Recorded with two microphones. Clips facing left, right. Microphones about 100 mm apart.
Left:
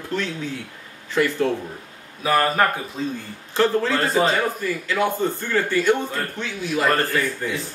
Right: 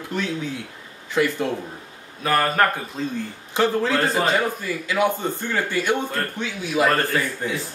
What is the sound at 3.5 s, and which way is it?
Speech, 15° right (ahead or behind).